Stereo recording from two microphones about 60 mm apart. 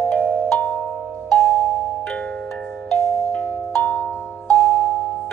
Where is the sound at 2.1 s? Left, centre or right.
Centre.